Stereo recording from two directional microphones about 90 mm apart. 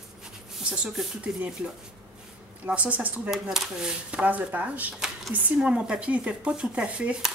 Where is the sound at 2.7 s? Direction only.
15° right (ahead or behind).